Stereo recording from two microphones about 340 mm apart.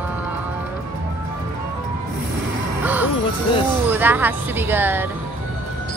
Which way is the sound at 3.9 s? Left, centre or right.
Centre.